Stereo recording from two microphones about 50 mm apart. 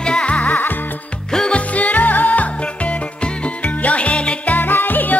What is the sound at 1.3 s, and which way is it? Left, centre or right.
Music, centre.